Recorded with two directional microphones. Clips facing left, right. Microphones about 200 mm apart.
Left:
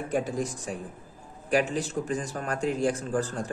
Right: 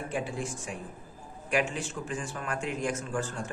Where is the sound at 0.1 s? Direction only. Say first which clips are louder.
Left 7 dB; 40° left (ahead or behind).